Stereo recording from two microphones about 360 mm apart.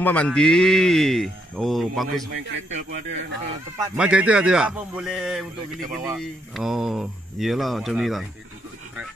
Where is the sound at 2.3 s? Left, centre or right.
Right.